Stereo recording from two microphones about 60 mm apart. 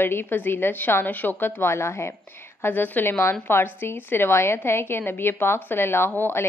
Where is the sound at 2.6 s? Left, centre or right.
Left.